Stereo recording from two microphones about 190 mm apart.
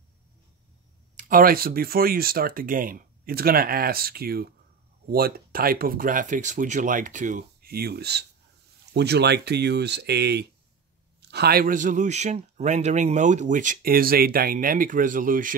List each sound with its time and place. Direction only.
1.1 s a man's voice: 50° right (ahead or behind)